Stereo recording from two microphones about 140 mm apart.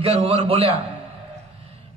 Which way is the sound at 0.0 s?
45° right (ahead or behind).